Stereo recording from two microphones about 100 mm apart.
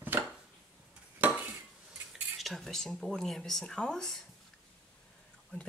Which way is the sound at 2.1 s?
Centre (ahead or behind).